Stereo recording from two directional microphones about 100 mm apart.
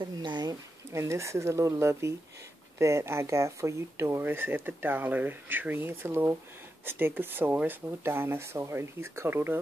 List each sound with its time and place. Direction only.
0.0 s speech: 45° right (ahead or behind)
0.9 s speech: 30° right (ahead or behind)